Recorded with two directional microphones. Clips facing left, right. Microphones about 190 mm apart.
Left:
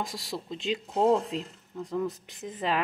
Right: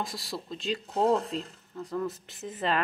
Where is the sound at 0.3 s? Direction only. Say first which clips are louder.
Left 3 dB; 20° left (ahead or behind).